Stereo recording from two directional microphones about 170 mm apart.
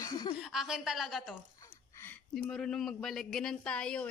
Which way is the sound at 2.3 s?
Centre (ahead or behind).